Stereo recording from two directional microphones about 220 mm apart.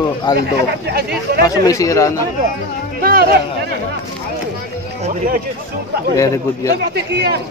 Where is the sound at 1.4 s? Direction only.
15° left (ahead or behind).